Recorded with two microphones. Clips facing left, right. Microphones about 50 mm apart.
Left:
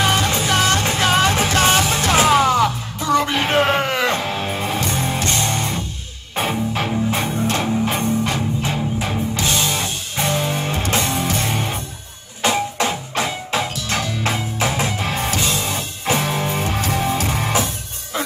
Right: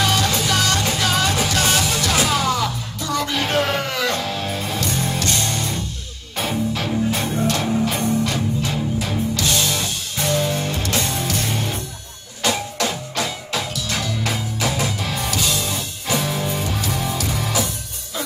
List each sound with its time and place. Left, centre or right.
0.0 s music: left
7.1 s music: left